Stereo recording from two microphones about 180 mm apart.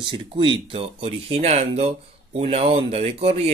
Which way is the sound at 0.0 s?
30° right (ahead or behind).